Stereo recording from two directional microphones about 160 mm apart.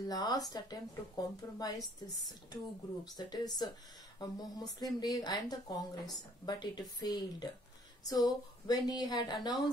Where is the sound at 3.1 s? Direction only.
25° left (ahead or behind).